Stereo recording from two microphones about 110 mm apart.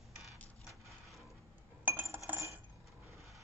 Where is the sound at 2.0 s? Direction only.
25° right (ahead or behind).